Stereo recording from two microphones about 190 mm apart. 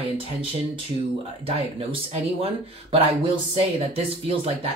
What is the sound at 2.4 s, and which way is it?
Speech, 30° right (ahead or behind).